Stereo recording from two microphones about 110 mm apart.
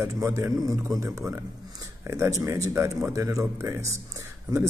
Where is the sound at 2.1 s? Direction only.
25° right (ahead or behind).